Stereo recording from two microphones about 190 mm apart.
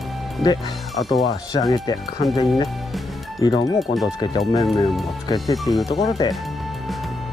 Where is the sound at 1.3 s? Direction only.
20° left (ahead or behind).